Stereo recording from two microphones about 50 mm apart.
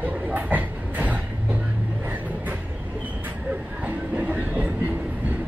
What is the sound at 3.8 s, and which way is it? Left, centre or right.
Train, right.